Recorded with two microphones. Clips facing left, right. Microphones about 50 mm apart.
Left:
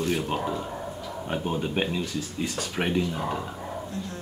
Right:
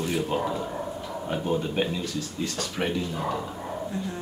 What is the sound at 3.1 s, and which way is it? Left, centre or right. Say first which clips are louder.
Speech: right 1 dB; centre.